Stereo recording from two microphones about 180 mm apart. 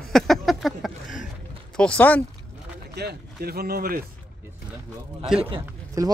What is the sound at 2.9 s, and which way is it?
Speech, 60° right (ahead or behind).